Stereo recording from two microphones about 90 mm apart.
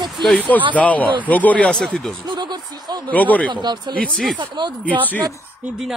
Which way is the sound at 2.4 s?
55° right (ahead or behind).